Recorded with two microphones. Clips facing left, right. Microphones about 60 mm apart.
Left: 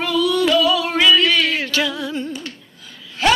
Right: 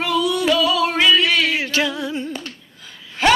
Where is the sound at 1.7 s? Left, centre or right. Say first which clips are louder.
Even; right.